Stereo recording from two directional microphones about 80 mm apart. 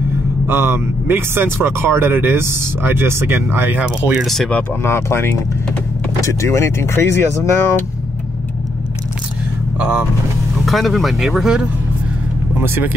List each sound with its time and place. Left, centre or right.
0.5 s speech: right
4.2 s speech: centre
4.8 s speech: left
9.8 s speech: right
10.6 s speech: centre
12.6 s speech: right